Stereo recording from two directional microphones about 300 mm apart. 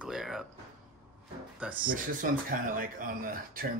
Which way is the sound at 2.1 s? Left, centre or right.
Right.